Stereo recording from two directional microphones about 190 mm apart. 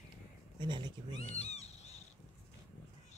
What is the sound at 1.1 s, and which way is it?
Cat, 35° left (ahead or behind).